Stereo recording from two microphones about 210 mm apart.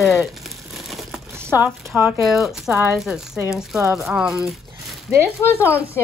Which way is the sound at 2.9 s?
Centre (ahead or behind).